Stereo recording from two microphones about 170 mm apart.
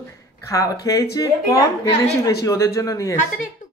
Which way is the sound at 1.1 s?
20° left (ahead or behind).